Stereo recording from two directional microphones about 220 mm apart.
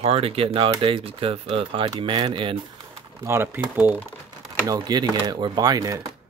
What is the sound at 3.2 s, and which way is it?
Speech, 10° right (ahead or behind).